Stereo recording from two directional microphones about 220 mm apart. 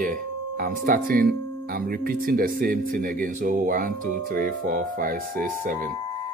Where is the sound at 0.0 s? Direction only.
40° right (ahead or behind).